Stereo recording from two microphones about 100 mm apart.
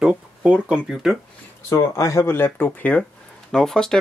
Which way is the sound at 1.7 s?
30° left (ahead or behind).